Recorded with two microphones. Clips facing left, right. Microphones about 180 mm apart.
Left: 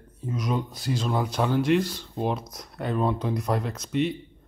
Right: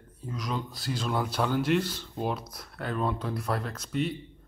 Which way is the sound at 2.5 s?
20° left (ahead or behind).